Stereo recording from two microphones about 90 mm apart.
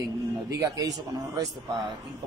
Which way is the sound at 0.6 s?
45° right (ahead or behind).